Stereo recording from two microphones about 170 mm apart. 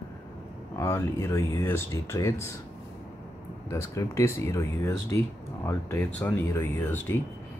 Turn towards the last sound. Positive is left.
turn(degrees=10)  # may be behind; listen again after turning